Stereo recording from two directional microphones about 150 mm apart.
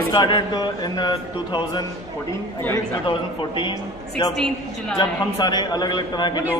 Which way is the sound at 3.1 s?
30° left (ahead or behind).